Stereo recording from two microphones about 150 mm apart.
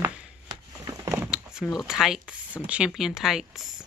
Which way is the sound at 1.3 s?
5° right (ahead or behind).